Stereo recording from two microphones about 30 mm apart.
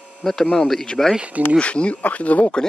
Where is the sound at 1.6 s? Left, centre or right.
Left.